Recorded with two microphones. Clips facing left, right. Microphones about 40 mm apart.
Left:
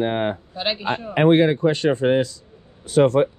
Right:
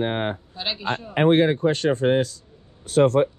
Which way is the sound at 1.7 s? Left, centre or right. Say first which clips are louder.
Left 2 dB; left.